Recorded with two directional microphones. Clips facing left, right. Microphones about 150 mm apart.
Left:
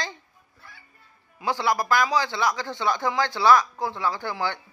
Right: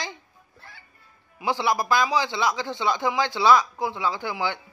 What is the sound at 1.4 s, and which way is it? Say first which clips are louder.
A man's voice: even; 20° right (ahead or behind).